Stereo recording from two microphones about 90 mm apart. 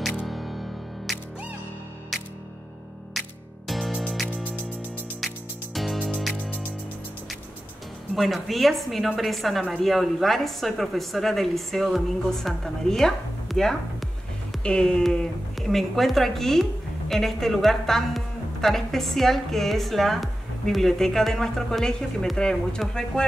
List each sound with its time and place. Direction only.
0.3 s music: centre (ahead or behind)
3.2 s music: centre (ahead or behind)
5.8 s music: centre (ahead or behind)
6.3 s music: 15° left (ahead or behind)
8.2 s speech: centre (ahead or behind)